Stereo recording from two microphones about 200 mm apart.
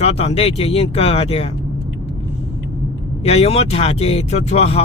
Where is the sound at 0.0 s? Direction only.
30° left (ahead or behind).